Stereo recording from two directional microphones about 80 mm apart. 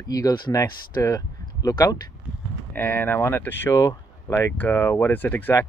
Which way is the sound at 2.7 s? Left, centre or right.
Left.